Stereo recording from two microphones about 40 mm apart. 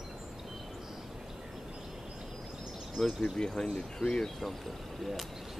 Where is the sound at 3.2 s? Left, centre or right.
Centre.